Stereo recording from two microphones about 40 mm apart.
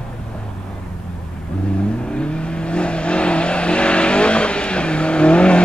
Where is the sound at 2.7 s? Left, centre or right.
Left.